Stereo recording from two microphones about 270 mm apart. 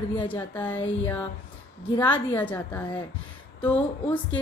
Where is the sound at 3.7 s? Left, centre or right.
Centre.